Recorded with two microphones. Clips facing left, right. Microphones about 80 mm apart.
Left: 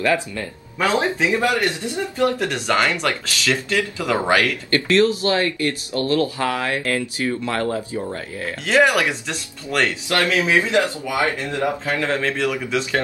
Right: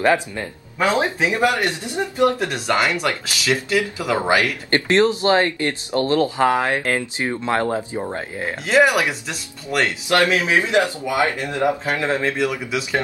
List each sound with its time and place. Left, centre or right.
0.0 s speech: right
2.5 s speech: centre
2.9 s speech: centre
4.6 s speech: right
8.6 s speech: centre
10.0 s speech: right